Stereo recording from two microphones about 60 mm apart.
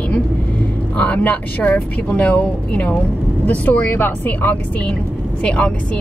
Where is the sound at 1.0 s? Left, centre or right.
Left.